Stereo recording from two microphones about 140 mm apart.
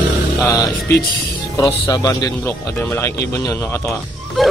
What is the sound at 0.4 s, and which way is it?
Speech, 20° left (ahead or behind).